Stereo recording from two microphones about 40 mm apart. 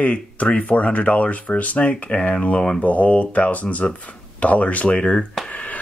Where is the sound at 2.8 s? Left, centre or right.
Left.